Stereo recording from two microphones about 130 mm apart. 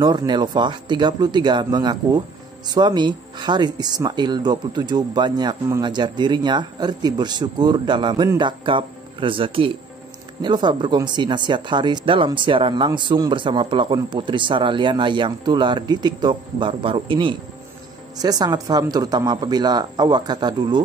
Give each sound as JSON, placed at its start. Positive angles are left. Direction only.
{"t": 0.3, "sound": "speech", "side_deg": -35}
{"t": 18.1, "sound": "speech", "side_deg": -30}